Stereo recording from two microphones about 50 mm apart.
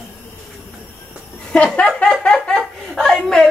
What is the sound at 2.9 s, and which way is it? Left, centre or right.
Speech, centre.